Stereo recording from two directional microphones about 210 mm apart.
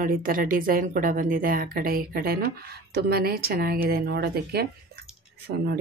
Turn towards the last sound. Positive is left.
turn(degrees=-50)  # may be behind; listen again after turning